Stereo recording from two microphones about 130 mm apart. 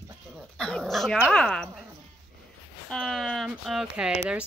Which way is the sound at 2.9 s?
5° left (ahead or behind).